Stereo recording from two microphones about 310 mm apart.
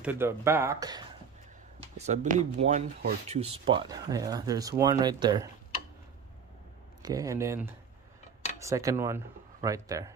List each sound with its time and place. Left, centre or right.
0.0 s speech: centre
7.0 s speech: centre